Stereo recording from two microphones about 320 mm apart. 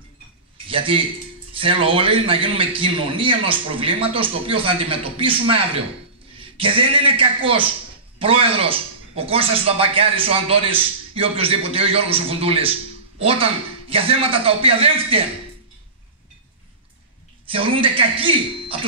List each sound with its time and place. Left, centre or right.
0.7 s speech: centre
17.5 s speech: centre